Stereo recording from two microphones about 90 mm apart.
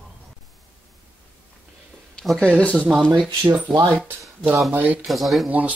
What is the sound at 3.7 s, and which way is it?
Speech, 5° right (ahead or behind).